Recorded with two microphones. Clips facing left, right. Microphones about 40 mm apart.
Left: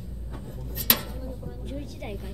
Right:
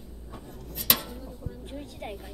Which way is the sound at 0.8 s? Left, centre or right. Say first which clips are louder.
Left 1 dB; centre.